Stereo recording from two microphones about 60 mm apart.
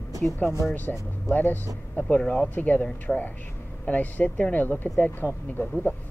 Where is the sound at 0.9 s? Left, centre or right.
Centre.